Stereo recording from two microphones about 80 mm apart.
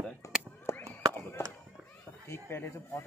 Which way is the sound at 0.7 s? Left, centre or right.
Left.